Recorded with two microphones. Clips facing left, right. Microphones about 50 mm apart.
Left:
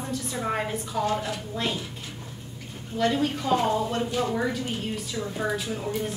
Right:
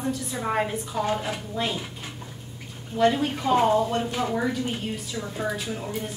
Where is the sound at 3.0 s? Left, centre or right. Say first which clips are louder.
Right 3 dB; centre.